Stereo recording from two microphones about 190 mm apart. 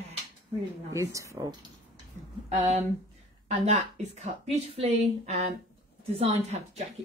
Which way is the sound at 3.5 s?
35° right (ahead or behind).